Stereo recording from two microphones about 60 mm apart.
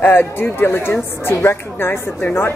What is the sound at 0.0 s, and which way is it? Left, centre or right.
A woman's voice, left.